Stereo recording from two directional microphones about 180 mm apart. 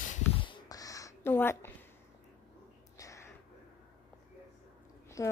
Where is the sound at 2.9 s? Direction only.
15° left (ahead or behind).